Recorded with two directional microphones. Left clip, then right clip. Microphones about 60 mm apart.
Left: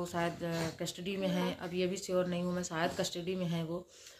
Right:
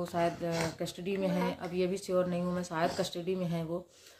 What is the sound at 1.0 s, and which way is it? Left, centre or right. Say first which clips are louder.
Speech: right 3 dB; right.